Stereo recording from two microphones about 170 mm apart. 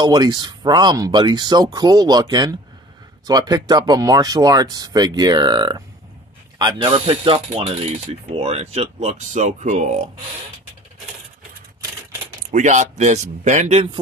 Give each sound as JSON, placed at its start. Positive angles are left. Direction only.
{"t": 0.0, "sound": "speech", "side_deg": -25}
{"t": 6.9, "sound": "speech", "side_deg": -35}
{"t": 12.4, "sound": "speech", "side_deg": -45}